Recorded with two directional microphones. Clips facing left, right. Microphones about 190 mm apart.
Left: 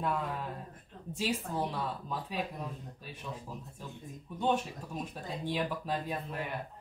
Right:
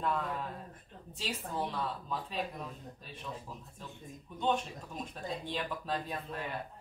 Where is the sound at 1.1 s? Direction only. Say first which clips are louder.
Left 4 dB; 10° left (ahead or behind).